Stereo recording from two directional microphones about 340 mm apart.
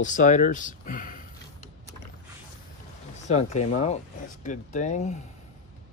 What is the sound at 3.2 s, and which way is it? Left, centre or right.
Speech, centre.